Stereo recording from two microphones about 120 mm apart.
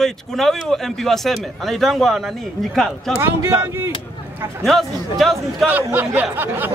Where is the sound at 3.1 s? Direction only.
20° right (ahead or behind).